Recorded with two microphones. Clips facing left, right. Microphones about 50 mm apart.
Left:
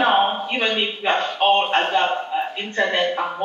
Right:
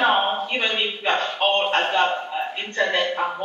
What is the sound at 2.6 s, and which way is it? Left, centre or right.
Speech, centre.